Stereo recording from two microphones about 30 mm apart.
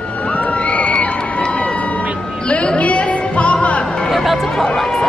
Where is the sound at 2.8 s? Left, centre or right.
Left.